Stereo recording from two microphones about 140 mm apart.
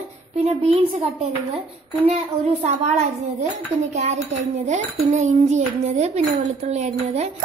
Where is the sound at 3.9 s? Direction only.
50° right (ahead or behind).